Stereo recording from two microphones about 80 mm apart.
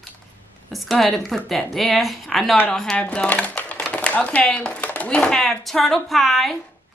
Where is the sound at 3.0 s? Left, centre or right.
Centre.